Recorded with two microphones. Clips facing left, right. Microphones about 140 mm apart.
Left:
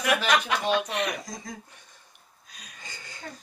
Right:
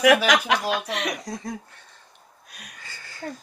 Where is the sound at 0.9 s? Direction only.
70° right (ahead or behind).